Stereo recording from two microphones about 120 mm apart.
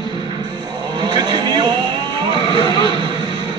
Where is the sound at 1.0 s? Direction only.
35° right (ahead or behind).